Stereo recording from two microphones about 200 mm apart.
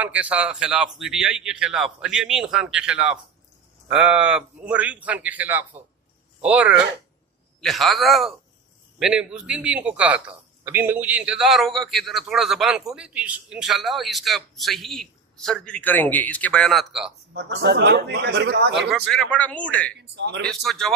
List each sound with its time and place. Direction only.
0.0 s a man's voice: 5° right (ahead or behind)
17.3 s speech: 60° right (ahead or behind)
18.9 s a man's voice: 5° left (ahead or behind)
20.0 s speech: 60° right (ahead or behind)
20.4 s a man's voice: centre (ahead or behind)